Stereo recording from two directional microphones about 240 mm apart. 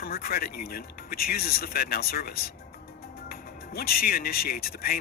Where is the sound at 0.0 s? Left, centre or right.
Left.